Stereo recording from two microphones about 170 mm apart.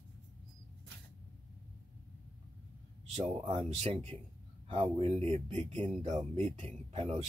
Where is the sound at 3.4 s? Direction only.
35° right (ahead or behind).